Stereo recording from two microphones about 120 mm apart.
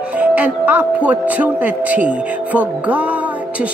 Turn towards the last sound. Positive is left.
turn(degrees=-10)  # may be behind; listen again after turning